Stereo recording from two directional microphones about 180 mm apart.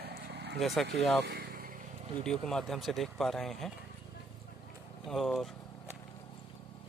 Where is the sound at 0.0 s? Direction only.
65° right (ahead or behind).